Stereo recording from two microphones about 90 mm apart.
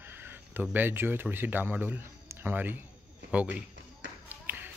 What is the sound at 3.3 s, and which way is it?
Speech, 15° right (ahead or behind).